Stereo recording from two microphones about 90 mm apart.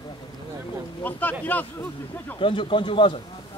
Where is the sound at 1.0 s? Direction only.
20° left (ahead or behind).